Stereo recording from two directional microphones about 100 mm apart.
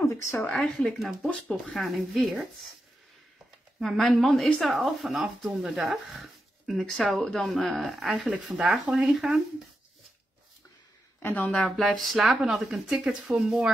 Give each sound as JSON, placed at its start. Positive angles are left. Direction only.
{"t": 0.0, "sound": "speech", "side_deg": 30}
{"t": 0.4, "sound": "speech", "side_deg": 5}
{"t": 3.8, "sound": "speech", "side_deg": 0}
{"t": 11.2, "sound": "speech", "side_deg": 15}
{"t": 11.6, "sound": "speech", "side_deg": 0}